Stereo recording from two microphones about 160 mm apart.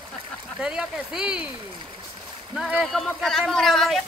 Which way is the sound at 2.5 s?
5° right (ahead or behind).